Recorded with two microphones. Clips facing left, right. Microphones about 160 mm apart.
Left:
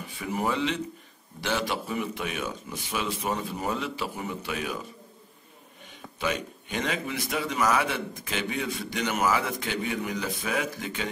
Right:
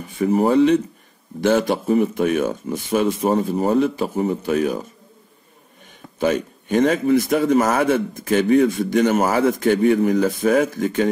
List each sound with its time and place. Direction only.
0.0 s speech: 45° right (ahead or behind)
6.1 s speech: 45° right (ahead or behind)